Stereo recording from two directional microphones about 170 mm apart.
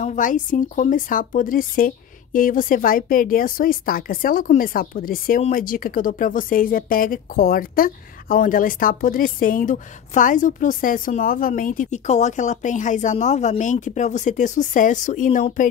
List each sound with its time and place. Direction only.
0.0 s a woman's voice: 50° left (ahead or behind)